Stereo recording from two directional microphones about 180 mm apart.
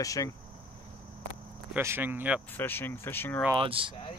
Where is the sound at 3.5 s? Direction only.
30° right (ahead or behind).